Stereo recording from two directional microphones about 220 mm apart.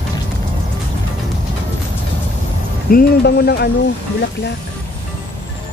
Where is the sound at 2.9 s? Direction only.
45° left (ahead or behind).